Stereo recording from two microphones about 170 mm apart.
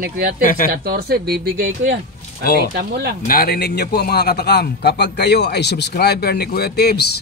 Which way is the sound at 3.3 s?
60° left (ahead or behind).